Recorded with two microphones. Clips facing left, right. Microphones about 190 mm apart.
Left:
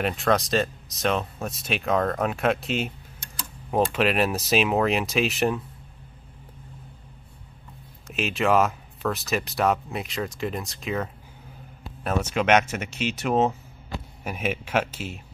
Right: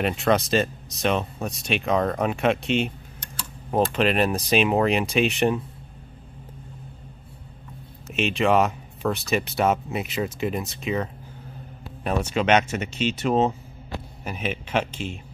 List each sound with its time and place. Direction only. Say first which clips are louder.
0.0 s speech: right 2 dB; centre (ahead or behind)
8.1 s speech: right 2 dB; centre (ahead or behind)
12.4 s speech: even; 10° left (ahead or behind)